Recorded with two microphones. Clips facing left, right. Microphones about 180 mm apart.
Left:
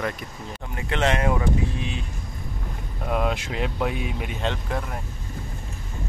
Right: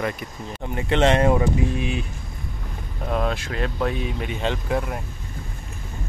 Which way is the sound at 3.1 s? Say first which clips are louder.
Even; 10° left (ahead or behind).